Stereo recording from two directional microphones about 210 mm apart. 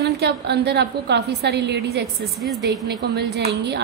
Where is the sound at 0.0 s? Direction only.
50° right (ahead or behind).